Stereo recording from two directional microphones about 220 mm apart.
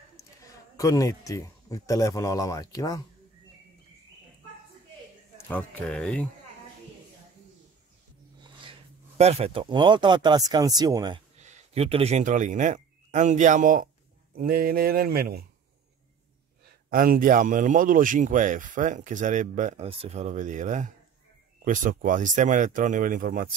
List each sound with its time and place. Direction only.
0.7 s speech: 15° left (ahead or behind)
5.5 s speech: 5° left (ahead or behind)
8.4 s a sound: 20° right (ahead or behind)
9.2 s speech: 30° right (ahead or behind)
11.3 s speech: 30° right (ahead or behind)
14.3 s a sound: 40° right (ahead or behind)
16.9 s speech: 40° right (ahead or behind)